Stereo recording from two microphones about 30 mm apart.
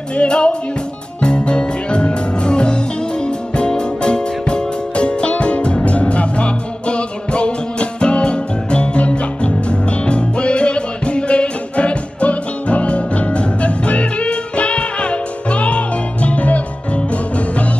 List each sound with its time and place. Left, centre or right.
0.1 s music: left